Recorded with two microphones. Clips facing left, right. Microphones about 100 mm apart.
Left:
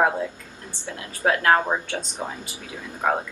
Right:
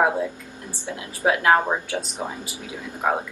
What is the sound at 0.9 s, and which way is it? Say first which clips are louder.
Speech: right 1 dB; 15° right (ahead or behind).